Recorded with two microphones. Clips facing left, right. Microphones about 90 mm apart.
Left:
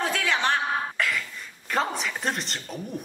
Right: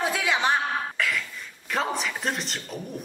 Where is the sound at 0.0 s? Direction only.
15° right (ahead or behind).